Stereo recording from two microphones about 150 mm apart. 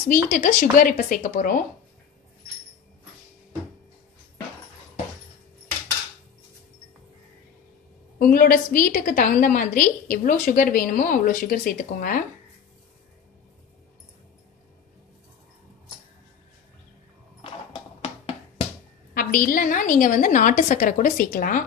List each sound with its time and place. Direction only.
0.1 s a woman's voice: 60° left (ahead or behind)
8.2 s a woman's voice: 70° left (ahead or behind)
19.1 s a woman's voice: 70° left (ahead or behind)